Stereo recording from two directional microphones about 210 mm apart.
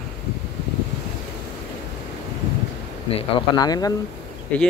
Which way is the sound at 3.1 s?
20° left (ahead or behind).